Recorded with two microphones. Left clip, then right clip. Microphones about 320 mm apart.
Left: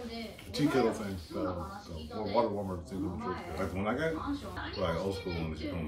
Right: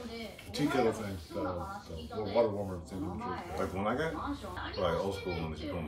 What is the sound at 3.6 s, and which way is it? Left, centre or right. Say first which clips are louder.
Speech: right 1 dB; centre.